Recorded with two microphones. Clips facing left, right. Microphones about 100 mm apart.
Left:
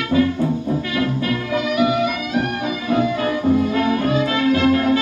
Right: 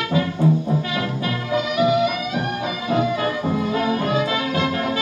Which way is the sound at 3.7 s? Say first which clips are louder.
Left 2 dB; 25° right (ahead or behind).